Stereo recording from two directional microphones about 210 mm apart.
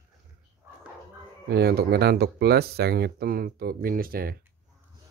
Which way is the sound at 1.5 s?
50° right (ahead or behind).